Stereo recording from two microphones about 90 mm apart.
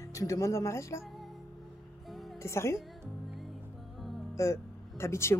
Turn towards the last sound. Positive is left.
turn(degrees=30)  # may be behind; listen again after turning